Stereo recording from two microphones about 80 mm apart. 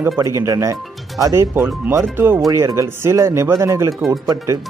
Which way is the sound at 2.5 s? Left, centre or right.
Right.